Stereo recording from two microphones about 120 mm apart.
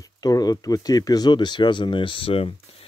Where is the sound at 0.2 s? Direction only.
30° left (ahead or behind).